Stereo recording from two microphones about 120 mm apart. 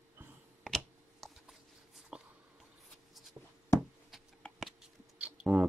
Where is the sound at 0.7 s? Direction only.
Centre (ahead or behind).